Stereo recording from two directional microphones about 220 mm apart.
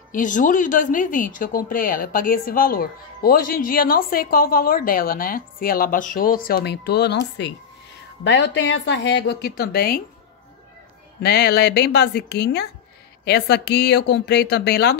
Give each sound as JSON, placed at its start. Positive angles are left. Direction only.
{"t": 0.1, "sound": "a woman's voice", "side_deg": 35}
{"t": 11.2, "sound": "a woman's voice", "side_deg": 45}